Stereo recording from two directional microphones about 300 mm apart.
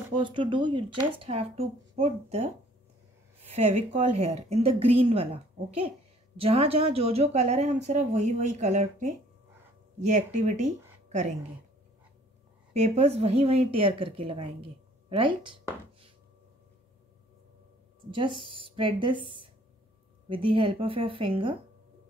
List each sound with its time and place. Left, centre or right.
0.2 s speech: centre
12.7 s a woman's voice: right
18.1 s a woman's voice: centre